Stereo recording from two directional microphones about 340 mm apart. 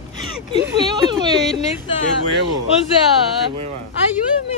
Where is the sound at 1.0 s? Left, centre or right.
Centre.